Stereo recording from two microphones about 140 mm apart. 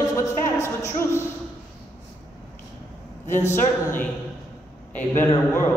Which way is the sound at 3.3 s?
20° left (ahead or behind).